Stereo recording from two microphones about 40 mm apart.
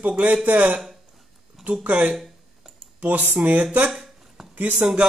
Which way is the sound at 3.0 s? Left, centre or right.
Right.